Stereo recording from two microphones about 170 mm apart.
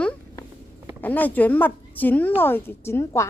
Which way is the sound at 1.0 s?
10° left (ahead or behind).